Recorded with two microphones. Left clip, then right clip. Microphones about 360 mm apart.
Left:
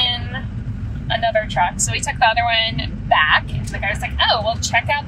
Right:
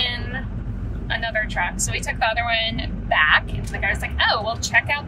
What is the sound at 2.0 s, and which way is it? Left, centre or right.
A woman's voice, right.